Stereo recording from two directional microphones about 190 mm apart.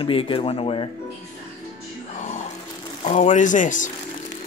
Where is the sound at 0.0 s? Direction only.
25° left (ahead or behind).